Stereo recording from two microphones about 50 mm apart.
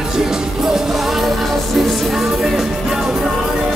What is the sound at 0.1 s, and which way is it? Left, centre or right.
Music, centre.